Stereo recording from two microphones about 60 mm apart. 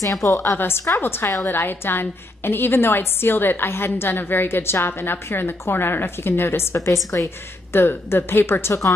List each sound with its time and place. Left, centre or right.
0.0 s a woman's voice: left
0.5 s a woman's voice: left
7.7 s a woman's voice: left